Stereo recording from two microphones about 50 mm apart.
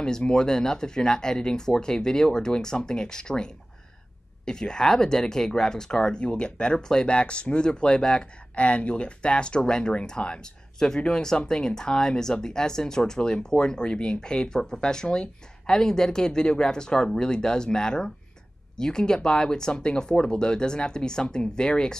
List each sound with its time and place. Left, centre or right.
0.3 s speech: centre